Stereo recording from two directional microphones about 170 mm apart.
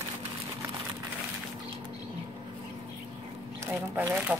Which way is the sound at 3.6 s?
15° right (ahead or behind).